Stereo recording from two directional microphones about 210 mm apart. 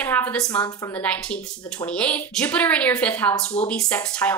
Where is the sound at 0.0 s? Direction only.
5° left (ahead or behind).